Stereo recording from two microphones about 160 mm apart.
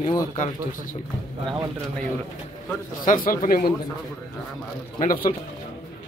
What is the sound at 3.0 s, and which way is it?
Speech, 60° left (ahead or behind).